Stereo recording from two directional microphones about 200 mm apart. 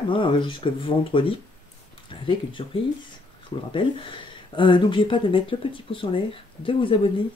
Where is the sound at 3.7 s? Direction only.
25° left (ahead or behind).